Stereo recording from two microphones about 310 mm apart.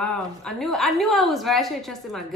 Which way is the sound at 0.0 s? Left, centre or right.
Centre.